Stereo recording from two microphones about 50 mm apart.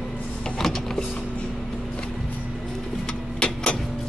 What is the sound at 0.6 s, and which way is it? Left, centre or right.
Power windows, centre.